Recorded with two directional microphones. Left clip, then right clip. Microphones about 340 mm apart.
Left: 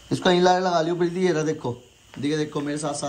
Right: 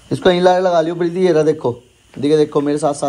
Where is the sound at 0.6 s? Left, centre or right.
Centre.